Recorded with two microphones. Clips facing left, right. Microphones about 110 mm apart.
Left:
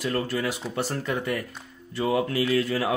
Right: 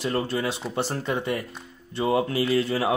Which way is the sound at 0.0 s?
25° right (ahead or behind).